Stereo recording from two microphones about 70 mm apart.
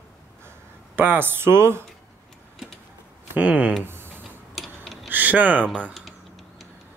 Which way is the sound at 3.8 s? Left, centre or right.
Right.